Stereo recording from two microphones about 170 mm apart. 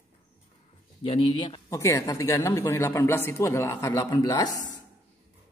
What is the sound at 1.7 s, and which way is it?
Speech, 15° left (ahead or behind).